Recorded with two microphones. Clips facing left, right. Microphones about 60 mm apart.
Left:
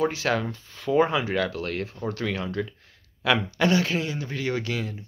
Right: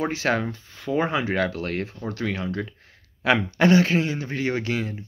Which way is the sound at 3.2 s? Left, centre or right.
Right.